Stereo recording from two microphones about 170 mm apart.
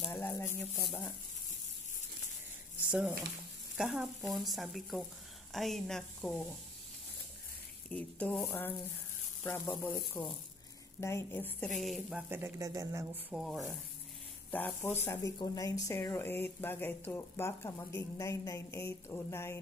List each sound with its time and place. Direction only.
0.1 s speech: 15° left (ahead or behind)
2.9 s speech: 5° right (ahead or behind)
7.9 s speech: 10° left (ahead or behind); by 13.2 s 20° right (ahead or behind)
13.3 s speech: centre (ahead or behind)
14.5 s speech: 10° left (ahead or behind)
15.0 s speech: 20° left (ahead or behind)